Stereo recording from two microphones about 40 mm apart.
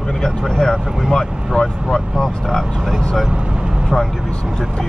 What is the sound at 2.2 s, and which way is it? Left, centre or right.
Speech, centre.